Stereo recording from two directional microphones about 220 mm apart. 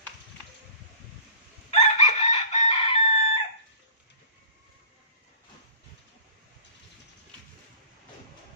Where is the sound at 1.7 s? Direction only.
30° left (ahead or behind).